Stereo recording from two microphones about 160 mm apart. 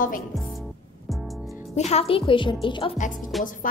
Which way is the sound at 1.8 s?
40° left (ahead or behind).